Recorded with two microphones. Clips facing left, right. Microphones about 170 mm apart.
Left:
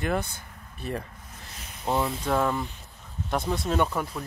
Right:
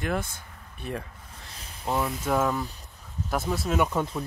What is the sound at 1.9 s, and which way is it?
Speech, 25° left (ahead or behind).